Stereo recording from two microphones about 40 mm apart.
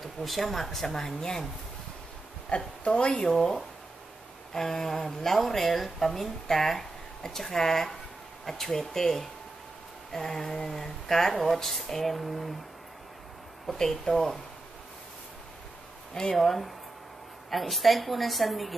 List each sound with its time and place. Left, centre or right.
0.0 s speech: centre
2.5 s speech: left
3.3 s speech: centre
4.6 s a woman's voice: centre
13.7 s speech: centre
16.3 s a woman's voice: centre